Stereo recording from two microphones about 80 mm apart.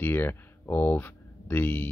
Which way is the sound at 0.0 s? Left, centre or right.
Left.